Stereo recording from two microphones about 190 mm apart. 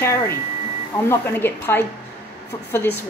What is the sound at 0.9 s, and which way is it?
Speech, 15° left (ahead or behind).